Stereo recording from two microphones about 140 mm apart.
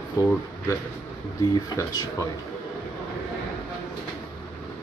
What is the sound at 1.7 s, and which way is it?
Speech, 25° left (ahead or behind).